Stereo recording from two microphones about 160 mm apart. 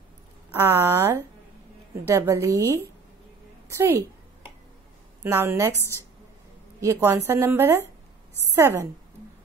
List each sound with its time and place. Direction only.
0.6 s a woman's voice: 20° right (ahead or behind)
5.2 s speech: 15° right (ahead or behind)